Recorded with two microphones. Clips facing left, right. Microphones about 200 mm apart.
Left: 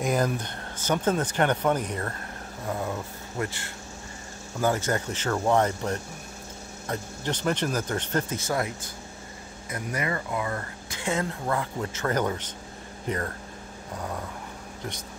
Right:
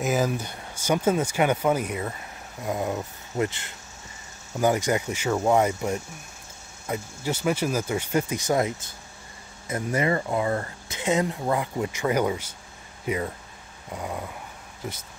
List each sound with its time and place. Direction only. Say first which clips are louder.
0.0 s speech: right 1 dB; 5° right (ahead or behind)